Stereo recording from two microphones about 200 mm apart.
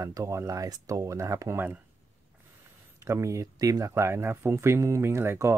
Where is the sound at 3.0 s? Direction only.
15° right (ahead or behind).